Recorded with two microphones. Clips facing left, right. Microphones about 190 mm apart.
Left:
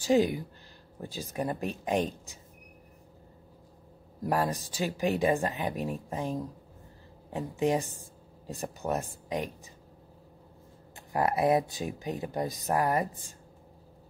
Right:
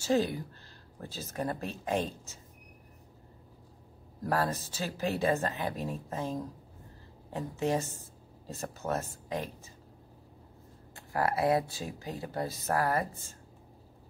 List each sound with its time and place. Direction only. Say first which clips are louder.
0.0 s speech: left 4 dB; 15° left (ahead or behind)
4.2 s a woman's voice: left 2 dB; 15° left (ahead or behind)
11.1 s speech: left 2 dB; 20° left (ahead or behind)